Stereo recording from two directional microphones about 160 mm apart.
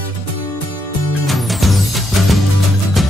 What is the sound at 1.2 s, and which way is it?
Music, centre (ahead or behind).